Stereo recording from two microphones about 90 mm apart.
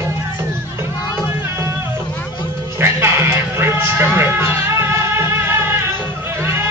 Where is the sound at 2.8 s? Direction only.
30° right (ahead or behind).